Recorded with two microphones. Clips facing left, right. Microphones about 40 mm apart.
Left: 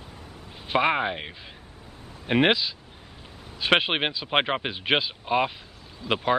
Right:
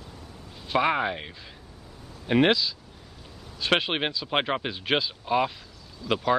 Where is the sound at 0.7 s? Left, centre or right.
Left.